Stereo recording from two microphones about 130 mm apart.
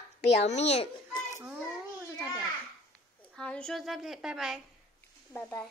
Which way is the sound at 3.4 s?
5° left (ahead or behind).